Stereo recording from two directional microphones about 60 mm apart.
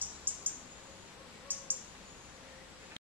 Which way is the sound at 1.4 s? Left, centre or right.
Right.